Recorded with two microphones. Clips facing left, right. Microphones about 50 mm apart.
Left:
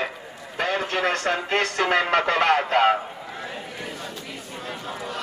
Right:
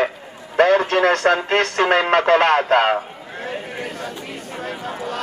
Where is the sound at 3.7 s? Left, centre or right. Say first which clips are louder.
Right 5 dB; right.